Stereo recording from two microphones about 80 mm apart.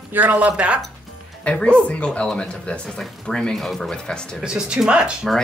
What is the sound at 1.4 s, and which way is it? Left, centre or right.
Speech, centre.